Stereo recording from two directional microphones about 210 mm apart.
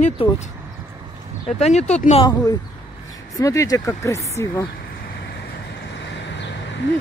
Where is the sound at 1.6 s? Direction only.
30° left (ahead or behind).